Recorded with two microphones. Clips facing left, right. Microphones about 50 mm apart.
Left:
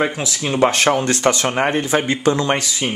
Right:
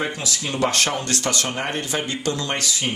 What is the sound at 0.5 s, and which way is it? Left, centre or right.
Speech, left.